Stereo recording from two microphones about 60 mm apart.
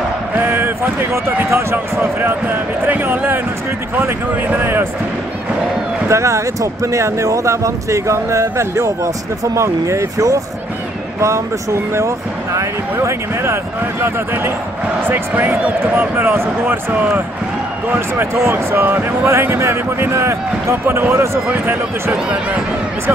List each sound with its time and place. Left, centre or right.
0.4 s basketball bounce: right
1.1 s speech: right
6.0 s speech: right
15.3 s speech: right
17.9 s speech: right
20.8 s speech: right